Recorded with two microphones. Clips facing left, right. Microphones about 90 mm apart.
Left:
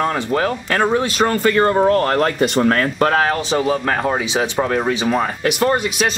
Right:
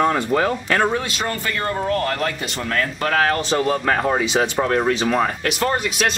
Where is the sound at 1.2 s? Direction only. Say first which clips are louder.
Left 9 dB; 40° left (ahead or behind).